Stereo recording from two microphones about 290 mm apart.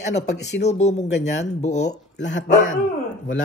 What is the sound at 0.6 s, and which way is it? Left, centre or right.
Speech, left.